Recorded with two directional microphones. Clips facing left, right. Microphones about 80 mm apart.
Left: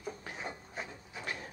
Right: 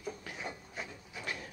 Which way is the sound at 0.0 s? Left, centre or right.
Left.